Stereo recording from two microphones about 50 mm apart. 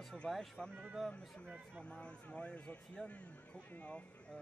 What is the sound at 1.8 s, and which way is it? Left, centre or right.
A man's voice, left.